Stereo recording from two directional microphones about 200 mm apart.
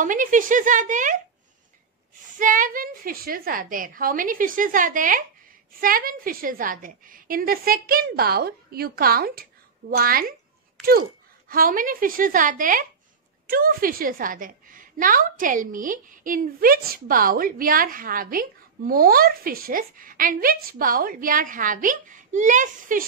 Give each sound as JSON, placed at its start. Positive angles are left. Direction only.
{"t": 0.0, "sound": "speech", "side_deg": -40}
{"t": 2.3, "sound": "a woman's voice", "side_deg": -40}